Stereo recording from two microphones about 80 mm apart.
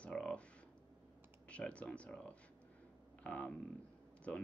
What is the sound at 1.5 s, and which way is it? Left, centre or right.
Speech, centre.